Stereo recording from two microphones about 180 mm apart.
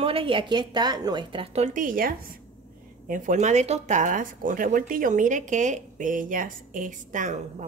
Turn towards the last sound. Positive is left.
turn(degrees=-40)  # may be behind; listen again after turning